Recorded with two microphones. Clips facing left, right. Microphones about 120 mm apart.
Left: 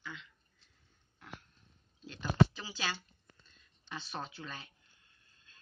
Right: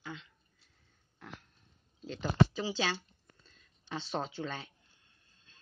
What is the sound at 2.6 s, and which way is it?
Speech, 30° right (ahead or behind).